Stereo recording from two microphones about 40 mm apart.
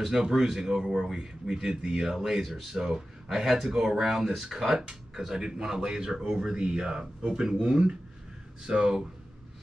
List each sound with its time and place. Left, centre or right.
0.0 s a man's voice: centre